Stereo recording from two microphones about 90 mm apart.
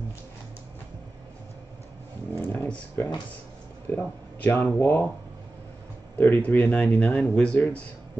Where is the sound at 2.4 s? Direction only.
25° left (ahead or behind).